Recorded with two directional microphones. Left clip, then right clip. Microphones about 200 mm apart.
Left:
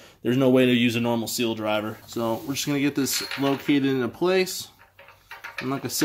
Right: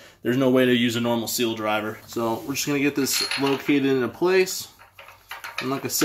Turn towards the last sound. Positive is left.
turn(degrees=30)  # may be behind; listen again after turning